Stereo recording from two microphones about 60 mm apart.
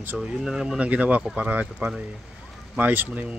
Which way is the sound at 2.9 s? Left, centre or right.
Right.